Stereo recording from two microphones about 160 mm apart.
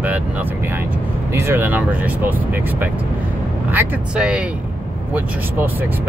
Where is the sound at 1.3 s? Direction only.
15° right (ahead or behind).